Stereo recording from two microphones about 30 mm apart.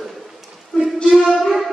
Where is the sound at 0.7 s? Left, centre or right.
Left.